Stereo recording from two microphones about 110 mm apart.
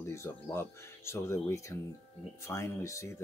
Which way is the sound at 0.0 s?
25° left (ahead or behind).